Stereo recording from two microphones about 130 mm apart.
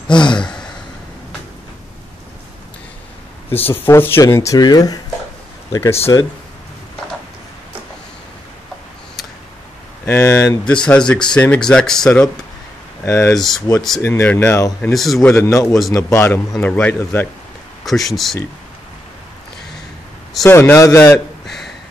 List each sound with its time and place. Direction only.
0.1 s sigh: 35° left (ahead or behind)
3.7 s speech: 15° left (ahead or behind)
5.7 s speech: 20° left (ahead or behind)
10.0 s speech: 20° left (ahead or behind)
10.6 s speech: 10° left (ahead or behind)
13.0 s speech: 20° left (ahead or behind)
13.3 s speech: centre (ahead or behind)
14.0 s speech: 15° left (ahead or behind)
14.9 s speech: centre (ahead or behind)
15.2 s speech: 20° left (ahead or behind)
17.8 s speech: centre (ahead or behind)
20.4 s speech: 20° left (ahead or behind)